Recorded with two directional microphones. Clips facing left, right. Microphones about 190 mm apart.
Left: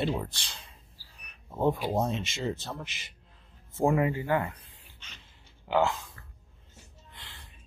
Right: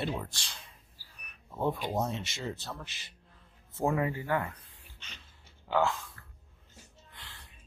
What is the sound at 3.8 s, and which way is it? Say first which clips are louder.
Speech: left 4 dB; 20° left (ahead or behind).